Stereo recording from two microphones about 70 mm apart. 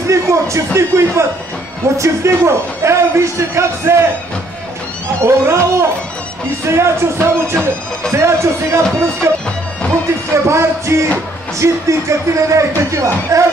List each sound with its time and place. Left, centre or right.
0.1 s a man's voice: right
5.2 s a man's voice: right
10.3 s speech: right